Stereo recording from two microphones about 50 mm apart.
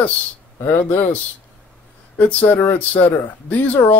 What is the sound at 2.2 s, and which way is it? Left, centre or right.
Speech, left.